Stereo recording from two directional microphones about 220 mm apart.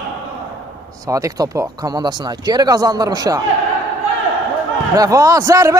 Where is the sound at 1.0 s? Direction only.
15° right (ahead or behind).